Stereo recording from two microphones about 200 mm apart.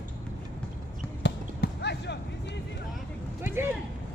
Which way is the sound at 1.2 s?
55° left (ahead or behind).